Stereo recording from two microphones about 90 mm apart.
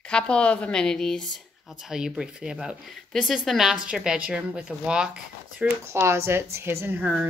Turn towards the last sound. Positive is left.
turn(degrees=-20)  # may be behind; listen again after turning